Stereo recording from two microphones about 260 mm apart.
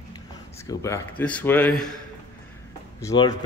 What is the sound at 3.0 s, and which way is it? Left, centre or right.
Speech, centre.